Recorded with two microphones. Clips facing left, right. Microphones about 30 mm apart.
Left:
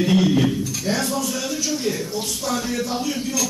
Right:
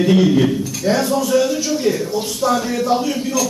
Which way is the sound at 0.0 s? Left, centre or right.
Centre.